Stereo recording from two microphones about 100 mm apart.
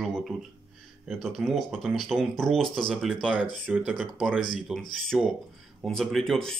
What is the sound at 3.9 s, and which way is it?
Speech, 5° left (ahead or behind).